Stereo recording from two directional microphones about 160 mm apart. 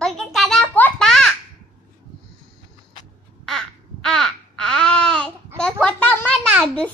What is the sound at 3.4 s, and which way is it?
Babbling, 5° left (ahead or behind).